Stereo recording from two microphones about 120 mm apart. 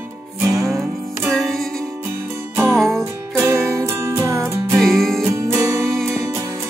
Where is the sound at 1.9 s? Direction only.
20° right (ahead or behind).